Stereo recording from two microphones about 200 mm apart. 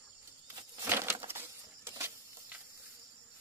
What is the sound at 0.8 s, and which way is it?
Crushing, 10° right (ahead or behind).